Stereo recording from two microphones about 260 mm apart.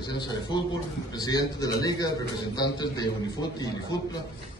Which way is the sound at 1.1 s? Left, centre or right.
Centre.